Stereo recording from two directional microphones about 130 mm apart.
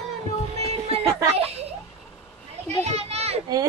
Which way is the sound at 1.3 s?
50° right (ahead or behind).